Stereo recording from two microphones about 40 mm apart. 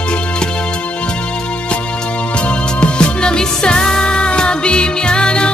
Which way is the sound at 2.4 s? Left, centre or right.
Left.